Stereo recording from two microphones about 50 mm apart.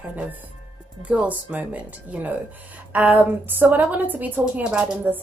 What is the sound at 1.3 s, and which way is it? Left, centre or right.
A woman's voice, right.